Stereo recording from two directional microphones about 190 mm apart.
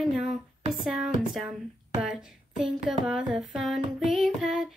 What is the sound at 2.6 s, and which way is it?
Child singing, 5° right (ahead or behind).